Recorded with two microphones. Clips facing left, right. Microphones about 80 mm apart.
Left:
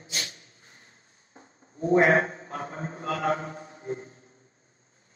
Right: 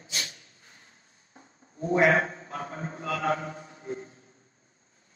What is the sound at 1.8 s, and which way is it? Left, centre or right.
Speech, left.